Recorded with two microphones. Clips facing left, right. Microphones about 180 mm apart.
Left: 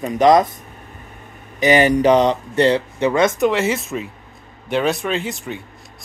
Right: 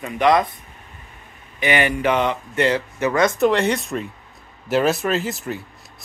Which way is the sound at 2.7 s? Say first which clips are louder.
Left 3 dB; 25° left (ahead or behind).